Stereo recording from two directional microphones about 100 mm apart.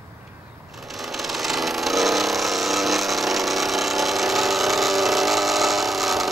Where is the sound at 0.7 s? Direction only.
Centre (ahead or behind).